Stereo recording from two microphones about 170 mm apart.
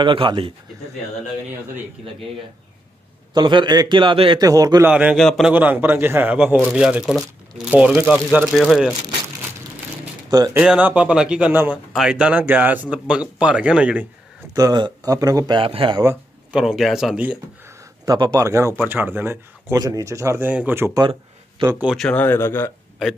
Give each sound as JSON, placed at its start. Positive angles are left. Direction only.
{"t": 0.0, "sound": "a man's voice", "side_deg": -30}
{"t": 3.3, "sound": "a man's voice", "side_deg": -25}
{"t": 4.8, "sound": "speech", "side_deg": -10}
{"t": 5.1, "sound": "speech", "side_deg": 0}
{"t": 5.5, "sound": "speech", "side_deg": -10}
{"t": 10.3, "sound": "a man's voice", "side_deg": -20}
{"t": 10.6, "sound": "speech", "side_deg": -5}
{"t": 14.5, "sound": "a man's voice", "side_deg": -20}
{"t": 16.5, "sound": "speech", "side_deg": 0}
{"t": 18.0, "sound": "speech", "side_deg": -25}
{"t": 21.0, "sound": "a sound", "side_deg": -25}
{"t": 21.8, "sound": "speech", "side_deg": 0}